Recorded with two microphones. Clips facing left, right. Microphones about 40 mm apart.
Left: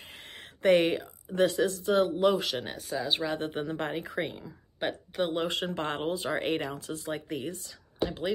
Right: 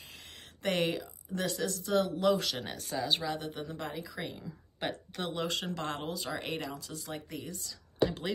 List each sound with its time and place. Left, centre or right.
0.6 s speech: left
2.6 s speech: centre
3.2 s speech: left
4.2 s speech: left
4.7 s speech: centre
5.3 s speech: left
8.0 s speech: centre